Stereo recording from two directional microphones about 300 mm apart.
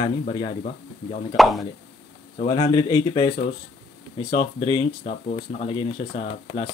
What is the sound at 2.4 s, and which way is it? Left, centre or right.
Speech, centre.